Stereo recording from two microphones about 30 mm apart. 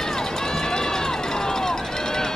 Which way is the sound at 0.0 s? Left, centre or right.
Centre.